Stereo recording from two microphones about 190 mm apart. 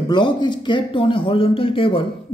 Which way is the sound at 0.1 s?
25° left (ahead or behind).